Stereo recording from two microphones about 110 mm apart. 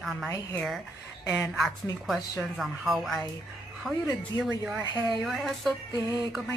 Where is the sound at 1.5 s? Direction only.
Centre (ahead or behind).